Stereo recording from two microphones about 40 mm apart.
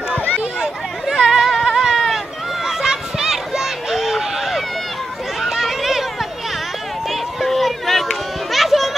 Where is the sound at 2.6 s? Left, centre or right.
Centre.